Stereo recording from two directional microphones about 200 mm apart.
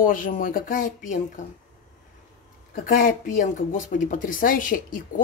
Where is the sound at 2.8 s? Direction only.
45° left (ahead or behind).